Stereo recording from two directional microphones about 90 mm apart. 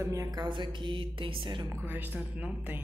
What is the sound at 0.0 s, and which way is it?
Speech, 35° right (ahead or behind).